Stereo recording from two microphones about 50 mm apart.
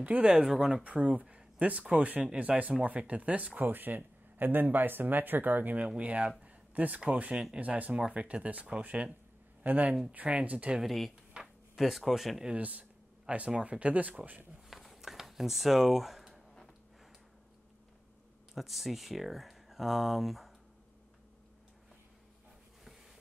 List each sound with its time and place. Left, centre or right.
0.0 s speech: right
0.6 s speech: centre
0.8 s speech: right
5.8 s speech: right
6.4 s a sound: right
7.1 s speech: right
10.8 s speech: centre
11.4 s a sound: centre
11.8 s speech: centre
12.5 s speech: right
14.7 s a sound: centre
18.5 s speech: centre